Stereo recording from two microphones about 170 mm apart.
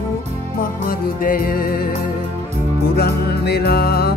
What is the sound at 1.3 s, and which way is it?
Music, 55° left (ahead or behind).